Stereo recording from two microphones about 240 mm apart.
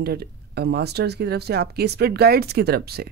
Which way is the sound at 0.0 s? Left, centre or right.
Right.